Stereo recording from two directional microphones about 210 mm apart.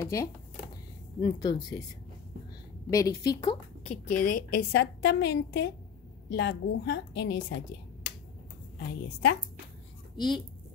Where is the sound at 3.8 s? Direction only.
40° left (ahead or behind); by 7.4 s 55° left (ahead or behind).